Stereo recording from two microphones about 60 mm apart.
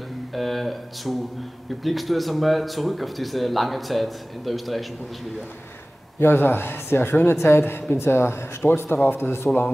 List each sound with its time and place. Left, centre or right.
0.3 s speech: centre
6.1 s speech: left